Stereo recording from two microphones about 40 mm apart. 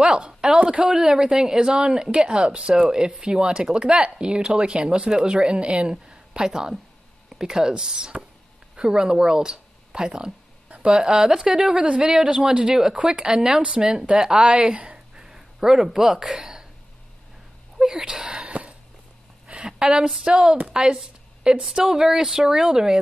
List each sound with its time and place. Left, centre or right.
0.0 s a woman's voice: centre
15.2 s speech: centre
17.7 s speech: centre
18.5 s a sound: right
20.2 s a woman's voice: right